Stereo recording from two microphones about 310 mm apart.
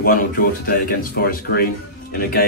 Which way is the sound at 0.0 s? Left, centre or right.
Left.